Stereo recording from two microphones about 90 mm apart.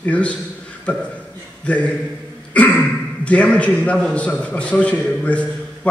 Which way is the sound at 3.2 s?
15° left (ahead or behind).